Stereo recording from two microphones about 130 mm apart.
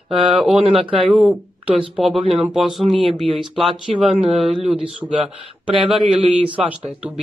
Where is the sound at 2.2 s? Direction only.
50° right (ahead or behind).